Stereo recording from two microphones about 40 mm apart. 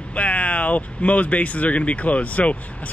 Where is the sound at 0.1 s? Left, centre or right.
Left.